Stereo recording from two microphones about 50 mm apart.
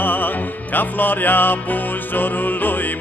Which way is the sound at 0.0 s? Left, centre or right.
Left.